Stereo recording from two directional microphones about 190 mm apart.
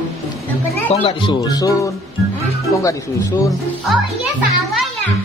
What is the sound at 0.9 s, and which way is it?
Speech, 35° left (ahead or behind).